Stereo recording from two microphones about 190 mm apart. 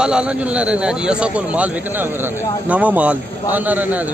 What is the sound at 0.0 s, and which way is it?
Speech, 5° right (ahead or behind).